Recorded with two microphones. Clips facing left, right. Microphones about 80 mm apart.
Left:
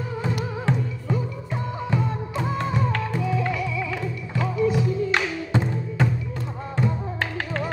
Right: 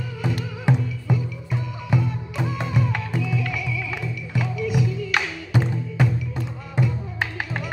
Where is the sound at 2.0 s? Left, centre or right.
Left.